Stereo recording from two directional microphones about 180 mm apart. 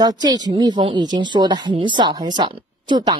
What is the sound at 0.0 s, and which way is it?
A woman's voice, 20° right (ahead or behind).